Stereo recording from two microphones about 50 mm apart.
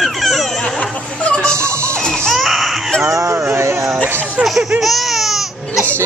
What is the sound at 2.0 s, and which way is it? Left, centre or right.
Baby cry, centre.